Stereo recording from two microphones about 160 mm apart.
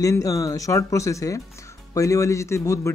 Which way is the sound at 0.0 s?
20° left (ahead or behind).